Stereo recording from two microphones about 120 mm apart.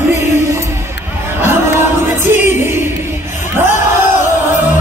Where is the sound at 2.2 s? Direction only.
20° right (ahead or behind).